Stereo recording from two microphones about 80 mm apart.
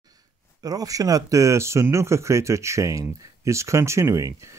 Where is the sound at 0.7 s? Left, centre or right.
Right.